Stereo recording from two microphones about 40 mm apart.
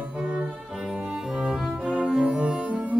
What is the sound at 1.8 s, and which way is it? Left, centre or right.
Cello, right.